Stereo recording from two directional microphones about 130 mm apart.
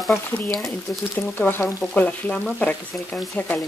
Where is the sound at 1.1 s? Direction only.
15° left (ahead or behind).